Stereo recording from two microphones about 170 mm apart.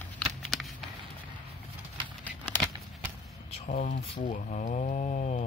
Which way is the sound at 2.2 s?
10° left (ahead or behind).